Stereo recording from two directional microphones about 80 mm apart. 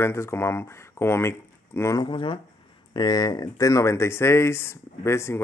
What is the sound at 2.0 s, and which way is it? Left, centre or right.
Speech, left.